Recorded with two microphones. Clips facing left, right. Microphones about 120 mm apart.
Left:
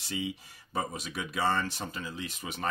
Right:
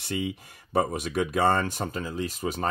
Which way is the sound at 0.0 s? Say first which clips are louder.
Right 5 dB; 55° right (ahead or behind).